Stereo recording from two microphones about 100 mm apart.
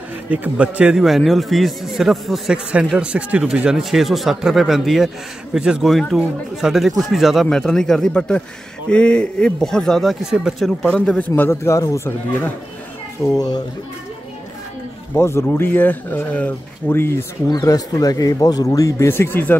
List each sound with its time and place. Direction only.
0.3 s speech: 15° right (ahead or behind); by 11.0 s centre (ahead or behind)
11.0 s a man's voice: 15° left (ahead or behind)
11.6 s speech: 30° left (ahead or behind)
13.4 s a man's voice: 40° left (ahead or behind)
15.1 s speech: 25° left (ahead or behind)
17.5 s a man's voice: 40° left (ahead or behind); by 19.5 s 20° left (ahead or behind)